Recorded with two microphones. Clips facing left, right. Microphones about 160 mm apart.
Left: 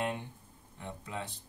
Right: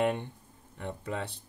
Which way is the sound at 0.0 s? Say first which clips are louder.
Right 7 dB; 65° right (ahead or behind).